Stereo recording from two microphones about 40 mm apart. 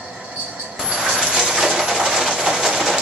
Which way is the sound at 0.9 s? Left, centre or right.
Centre.